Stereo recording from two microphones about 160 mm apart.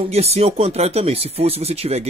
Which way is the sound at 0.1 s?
40° right (ahead or behind).